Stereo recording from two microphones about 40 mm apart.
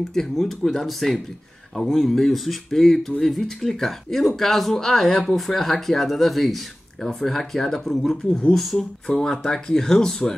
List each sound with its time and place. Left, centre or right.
0.1 s speech: centre
0.5 s speech: centre
8.3 s speech: left
8.5 s speech: centre